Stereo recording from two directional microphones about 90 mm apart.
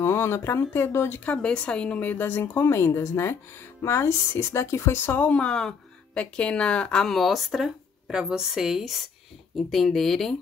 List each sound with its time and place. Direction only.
0.0 s speech: 30° left (ahead or behind)
1.3 s speech: 10° left (ahead or behind)